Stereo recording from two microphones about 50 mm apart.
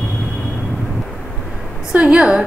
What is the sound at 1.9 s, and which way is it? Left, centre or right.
Speech, right.